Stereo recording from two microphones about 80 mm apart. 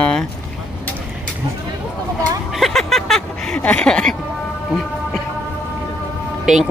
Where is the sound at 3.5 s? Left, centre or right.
Centre.